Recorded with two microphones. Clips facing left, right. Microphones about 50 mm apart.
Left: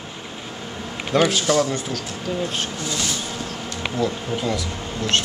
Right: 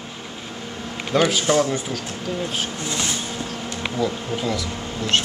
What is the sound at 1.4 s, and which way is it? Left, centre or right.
Speech, centre.